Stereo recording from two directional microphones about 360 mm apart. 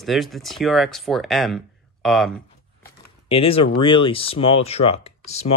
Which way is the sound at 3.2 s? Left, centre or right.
Centre.